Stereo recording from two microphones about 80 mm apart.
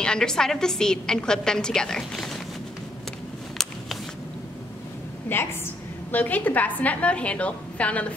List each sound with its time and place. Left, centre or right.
0.0 s a woman's voice: centre
5.3 s a woman's voice: left